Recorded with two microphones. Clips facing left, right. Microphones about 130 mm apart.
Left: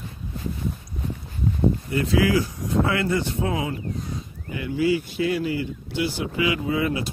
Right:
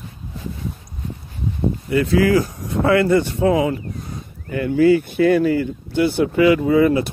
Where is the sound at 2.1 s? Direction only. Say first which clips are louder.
Right 4 dB; 50° right (ahead or behind); by 3.7 s 70° right (ahead or behind).